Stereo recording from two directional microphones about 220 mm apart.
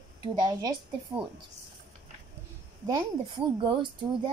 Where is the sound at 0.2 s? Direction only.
20° right (ahead or behind).